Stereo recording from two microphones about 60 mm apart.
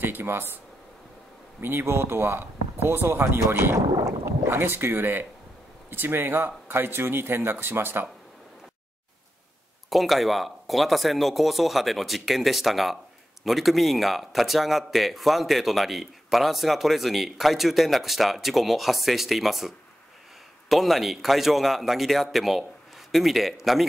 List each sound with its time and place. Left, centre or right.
0.0 s speech: right
1.6 s speech: right
4.5 s speech: right
9.8 s a man's voice: centre